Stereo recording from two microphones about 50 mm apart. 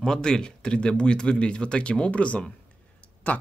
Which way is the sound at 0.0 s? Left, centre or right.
Centre.